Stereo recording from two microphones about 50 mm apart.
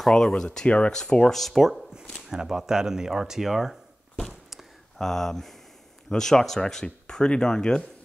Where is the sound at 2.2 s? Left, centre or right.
Centre.